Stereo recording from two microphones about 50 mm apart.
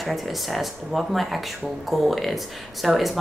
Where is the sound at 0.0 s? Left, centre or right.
Centre.